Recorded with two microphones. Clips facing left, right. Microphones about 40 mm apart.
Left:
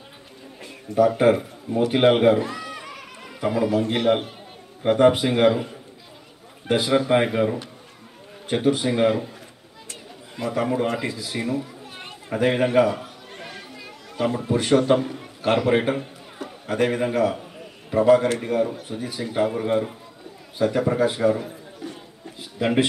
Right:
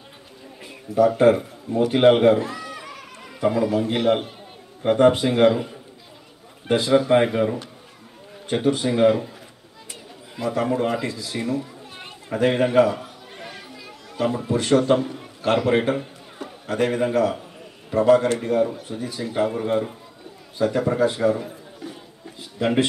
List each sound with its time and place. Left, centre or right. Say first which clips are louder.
0.9 s a man's voice: right 1 dB; centre
6.9 s speech: right 3 dB; centre
9.0 s speech: right 4 dB; centre
10.3 s speech: right 1 dB; centre
11.1 s a man's voice: even; left
11.3 s children playing: right 1 dB; centre
15.0 s a man's voice: even; centre
21.2 s a sound: even; centre